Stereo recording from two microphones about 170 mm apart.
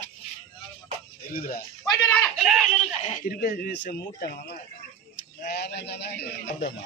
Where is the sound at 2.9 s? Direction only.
45° left (ahead or behind); by 4.5 s 70° left (ahead or behind).